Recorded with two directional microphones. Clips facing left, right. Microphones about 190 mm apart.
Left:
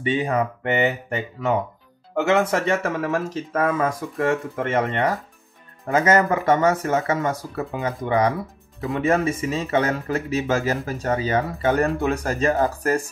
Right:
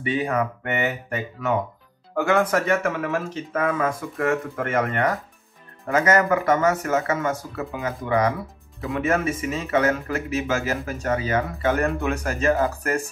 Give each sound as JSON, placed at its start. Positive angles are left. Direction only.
{"t": 0.0, "sound": "speech", "side_deg": 30}